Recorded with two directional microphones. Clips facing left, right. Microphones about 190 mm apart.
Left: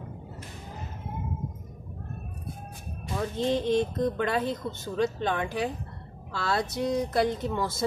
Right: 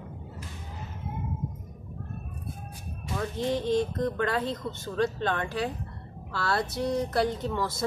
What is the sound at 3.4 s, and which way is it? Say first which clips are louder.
Speech: left 1 dB; 20° left (ahead or behind).